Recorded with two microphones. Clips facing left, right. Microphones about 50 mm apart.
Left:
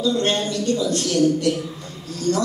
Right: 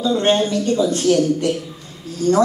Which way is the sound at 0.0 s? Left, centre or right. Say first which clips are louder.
Right 4 dB; right.